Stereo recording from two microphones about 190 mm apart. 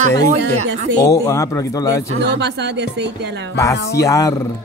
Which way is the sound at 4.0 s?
15° left (ahead or behind).